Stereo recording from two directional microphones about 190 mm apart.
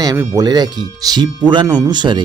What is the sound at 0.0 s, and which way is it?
Speech, 20° right (ahead or behind).